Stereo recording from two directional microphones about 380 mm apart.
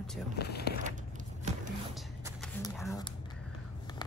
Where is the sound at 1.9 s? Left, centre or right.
Centre.